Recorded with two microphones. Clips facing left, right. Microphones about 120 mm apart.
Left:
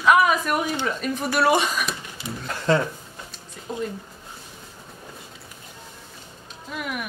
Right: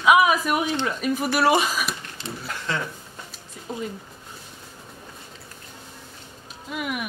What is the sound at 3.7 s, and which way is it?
Speech, centre (ahead or behind).